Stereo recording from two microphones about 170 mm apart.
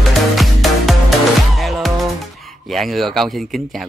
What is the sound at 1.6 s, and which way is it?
Speech, centre (ahead or behind).